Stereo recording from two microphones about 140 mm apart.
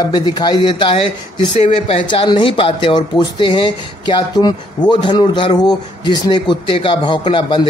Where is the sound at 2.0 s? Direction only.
35° left (ahead or behind).